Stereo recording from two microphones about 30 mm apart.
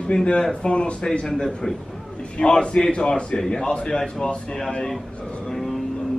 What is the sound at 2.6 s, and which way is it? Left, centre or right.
A man's voice, left.